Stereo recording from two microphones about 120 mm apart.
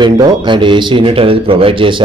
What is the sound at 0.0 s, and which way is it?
Speech, 45° right (ahead or behind).